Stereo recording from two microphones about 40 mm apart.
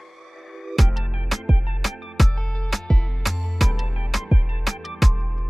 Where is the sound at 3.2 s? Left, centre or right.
Centre.